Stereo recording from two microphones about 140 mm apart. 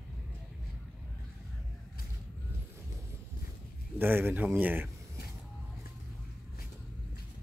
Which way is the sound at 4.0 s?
15° right (ahead or behind).